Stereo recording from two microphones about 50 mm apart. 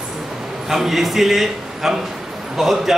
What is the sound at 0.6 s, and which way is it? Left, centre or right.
A man's voice, centre.